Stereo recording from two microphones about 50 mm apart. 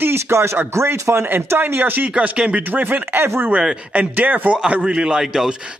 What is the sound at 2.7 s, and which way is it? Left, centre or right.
A man's voice, right.